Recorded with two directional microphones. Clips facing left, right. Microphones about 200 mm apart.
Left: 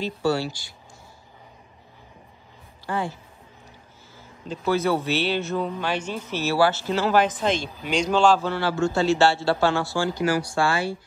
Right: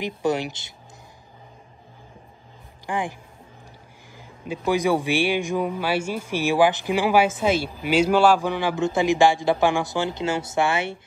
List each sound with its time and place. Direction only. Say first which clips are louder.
0.0 s speech: even; 20° right (ahead or behind)
2.9 s speech: even; 15° right (ahead or behind)
4.2 s speech: right 2 dB; 15° right (ahead or behind)